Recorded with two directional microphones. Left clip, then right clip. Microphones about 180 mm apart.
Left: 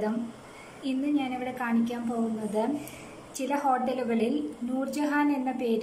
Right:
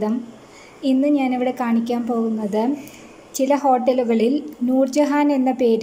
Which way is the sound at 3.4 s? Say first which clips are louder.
Right 10 dB; 25° right (ahead or behind).